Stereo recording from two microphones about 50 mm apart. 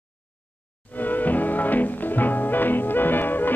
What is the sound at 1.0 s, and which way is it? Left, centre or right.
Music, left.